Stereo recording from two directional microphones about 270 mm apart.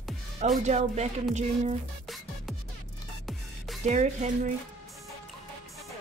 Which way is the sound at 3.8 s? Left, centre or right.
Right.